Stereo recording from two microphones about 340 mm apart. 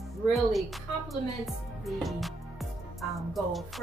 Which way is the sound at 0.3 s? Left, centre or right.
Centre.